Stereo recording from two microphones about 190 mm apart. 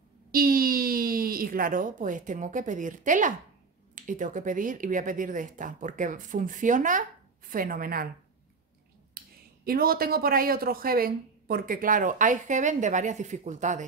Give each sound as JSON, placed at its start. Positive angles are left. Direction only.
{"t": 0.3, "sound": "speech", "side_deg": -50}
{"t": 9.2, "sound": "a sound", "side_deg": -55}
{"t": 9.7, "sound": "speech", "side_deg": -50}